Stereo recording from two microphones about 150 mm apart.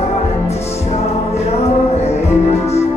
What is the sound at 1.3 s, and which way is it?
Music, 45° left (ahead or behind).